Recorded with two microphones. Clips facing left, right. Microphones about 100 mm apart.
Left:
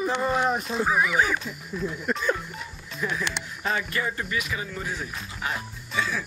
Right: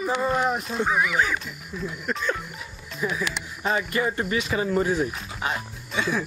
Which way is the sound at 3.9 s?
30° right (ahead or behind).